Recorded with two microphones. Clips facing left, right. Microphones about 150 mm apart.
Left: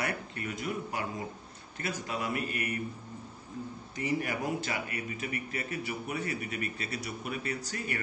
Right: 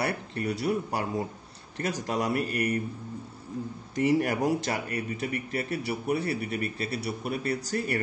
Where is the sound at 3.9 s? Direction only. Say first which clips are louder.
Right 8 dB; 45° right (ahead or behind).